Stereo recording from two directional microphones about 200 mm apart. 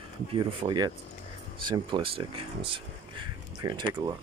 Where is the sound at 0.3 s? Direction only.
25° right (ahead or behind).